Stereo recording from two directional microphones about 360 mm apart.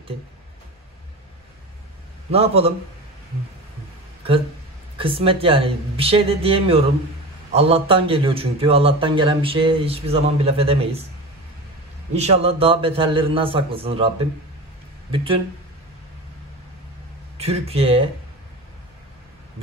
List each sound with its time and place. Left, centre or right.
2.3 s a man's voice: centre
4.9 s a man's voice: centre
12.2 s a man's voice: centre
17.4 s a man's voice: centre